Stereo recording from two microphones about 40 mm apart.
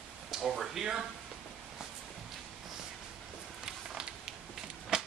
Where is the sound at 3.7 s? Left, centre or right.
Centre.